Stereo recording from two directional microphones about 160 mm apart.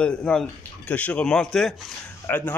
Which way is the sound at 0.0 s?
5° left (ahead or behind).